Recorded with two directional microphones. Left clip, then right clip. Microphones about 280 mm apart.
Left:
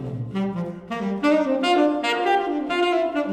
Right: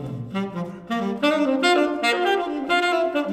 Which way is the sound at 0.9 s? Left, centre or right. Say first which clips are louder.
Left 1 dB; right.